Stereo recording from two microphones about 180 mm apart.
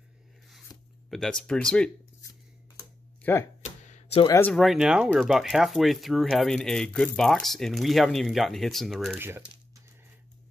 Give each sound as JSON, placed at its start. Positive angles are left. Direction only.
{"t": 0.7, "sound": "zipper", "side_deg": 20}
{"t": 1.1, "sound": "speech", "side_deg": 5}
{"t": 3.2, "sound": "a sound", "side_deg": 10}
{"t": 3.6, "sound": "a sound", "side_deg": 40}
{"t": 4.4, "sound": "speech", "side_deg": 5}
{"t": 9.1, "sound": "speech", "side_deg": -10}